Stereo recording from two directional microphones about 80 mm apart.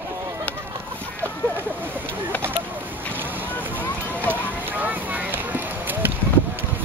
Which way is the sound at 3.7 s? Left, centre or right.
Right.